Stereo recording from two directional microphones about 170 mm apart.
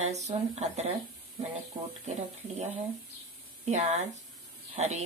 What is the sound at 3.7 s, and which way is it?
Speech, 45° right (ahead or behind).